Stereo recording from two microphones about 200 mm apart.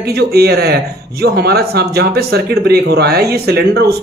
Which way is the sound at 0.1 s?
55° right (ahead or behind).